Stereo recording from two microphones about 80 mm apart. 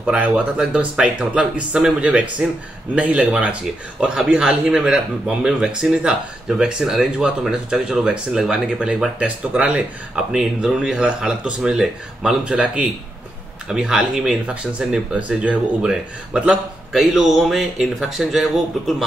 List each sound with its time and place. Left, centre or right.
0.0 s a man's voice: centre
14.4 s a man's voice: centre